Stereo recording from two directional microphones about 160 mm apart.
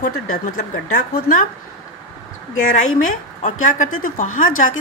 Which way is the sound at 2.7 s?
55° left (ahead or behind).